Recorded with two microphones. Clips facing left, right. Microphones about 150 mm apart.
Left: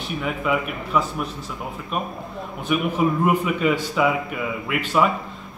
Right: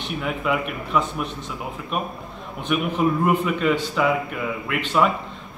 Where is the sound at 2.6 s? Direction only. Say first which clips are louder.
Even; 5° left (ahead or behind).